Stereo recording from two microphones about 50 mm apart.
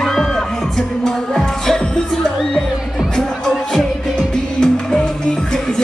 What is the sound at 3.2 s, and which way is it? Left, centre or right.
Music, centre.